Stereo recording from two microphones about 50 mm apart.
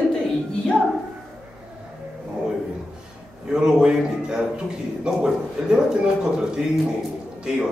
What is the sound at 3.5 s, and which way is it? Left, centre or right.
A man's voice, centre.